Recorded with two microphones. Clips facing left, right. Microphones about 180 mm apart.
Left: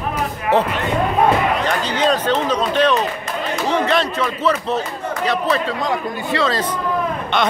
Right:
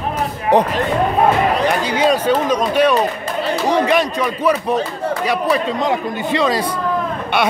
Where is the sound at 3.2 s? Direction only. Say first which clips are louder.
Right 3 dB; 35° right (ahead or behind).